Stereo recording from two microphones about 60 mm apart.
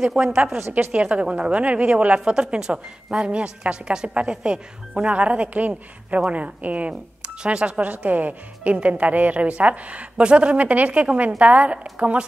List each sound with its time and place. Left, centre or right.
0.2 s a woman's voice: centre